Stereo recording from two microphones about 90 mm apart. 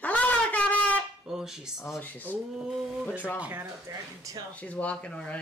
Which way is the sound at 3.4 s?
25° right (ahead or behind).